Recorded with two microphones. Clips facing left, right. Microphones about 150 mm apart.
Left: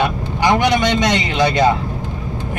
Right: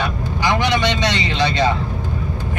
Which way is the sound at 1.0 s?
50° left (ahead or behind).